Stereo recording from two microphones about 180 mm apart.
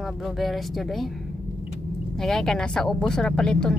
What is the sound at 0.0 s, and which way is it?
A woman's voice, centre (ahead or behind).